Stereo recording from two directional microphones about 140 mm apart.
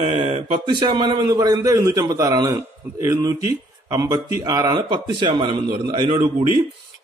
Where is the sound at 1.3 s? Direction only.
25° right (ahead or behind).